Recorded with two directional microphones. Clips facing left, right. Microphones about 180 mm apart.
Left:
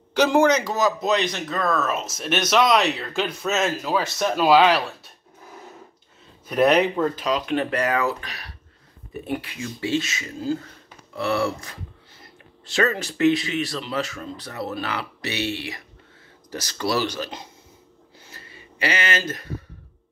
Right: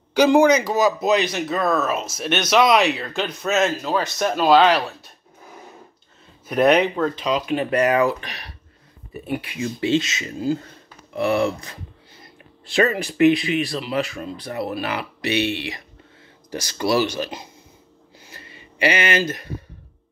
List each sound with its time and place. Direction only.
0.1 s a man's voice: 5° right (ahead or behind)
6.5 s a man's voice: centre (ahead or behind)
7.7 s speech: 15° right (ahead or behind)
12.6 s speech: 15° right (ahead or behind)
18.8 s speech: 15° right (ahead or behind)